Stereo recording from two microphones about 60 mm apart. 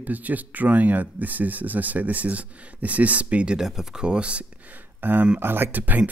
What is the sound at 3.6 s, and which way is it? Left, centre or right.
Speech, centre.